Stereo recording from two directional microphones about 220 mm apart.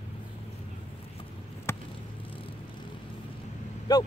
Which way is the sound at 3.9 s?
15° left (ahead or behind).